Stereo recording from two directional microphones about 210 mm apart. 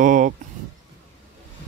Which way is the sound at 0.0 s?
40° right (ahead or behind).